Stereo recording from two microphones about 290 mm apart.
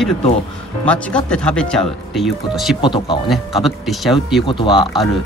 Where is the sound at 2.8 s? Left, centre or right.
Centre.